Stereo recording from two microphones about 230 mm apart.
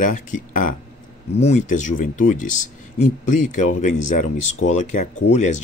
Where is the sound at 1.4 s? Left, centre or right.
Left.